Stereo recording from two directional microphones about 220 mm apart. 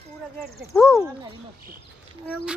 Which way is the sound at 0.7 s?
Centre (ahead or behind).